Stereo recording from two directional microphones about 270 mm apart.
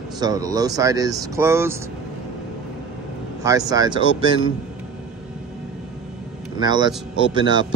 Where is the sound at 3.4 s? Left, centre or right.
Centre.